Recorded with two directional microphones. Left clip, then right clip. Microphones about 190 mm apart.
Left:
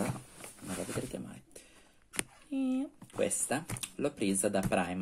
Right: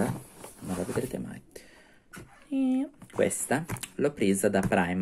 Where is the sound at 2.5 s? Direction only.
45° right (ahead or behind).